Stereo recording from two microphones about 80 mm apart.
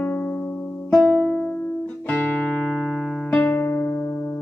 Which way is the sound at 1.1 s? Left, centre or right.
Centre.